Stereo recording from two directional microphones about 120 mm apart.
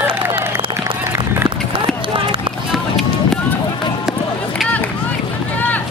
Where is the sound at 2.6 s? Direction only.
Centre (ahead or behind).